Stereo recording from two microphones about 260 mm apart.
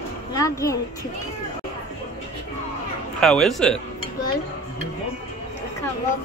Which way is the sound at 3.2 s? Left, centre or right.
Centre.